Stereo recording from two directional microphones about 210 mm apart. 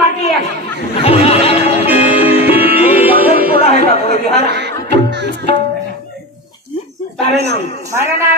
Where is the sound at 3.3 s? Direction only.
45° right (ahead or behind).